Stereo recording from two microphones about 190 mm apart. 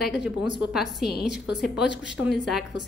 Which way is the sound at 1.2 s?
65° left (ahead or behind).